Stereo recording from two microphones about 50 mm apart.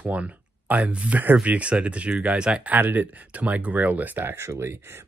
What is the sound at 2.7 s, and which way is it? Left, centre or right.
Speech, right.